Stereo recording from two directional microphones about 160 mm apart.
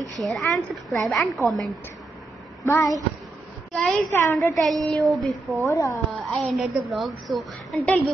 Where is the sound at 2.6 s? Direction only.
20° left (ahead or behind).